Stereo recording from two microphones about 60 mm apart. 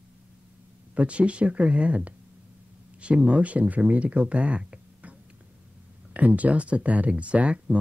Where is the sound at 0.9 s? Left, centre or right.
Centre.